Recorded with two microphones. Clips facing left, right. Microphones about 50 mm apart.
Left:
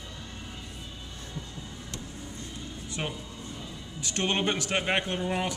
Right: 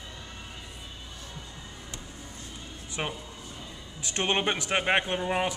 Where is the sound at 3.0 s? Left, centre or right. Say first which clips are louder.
Right 2 dB; right.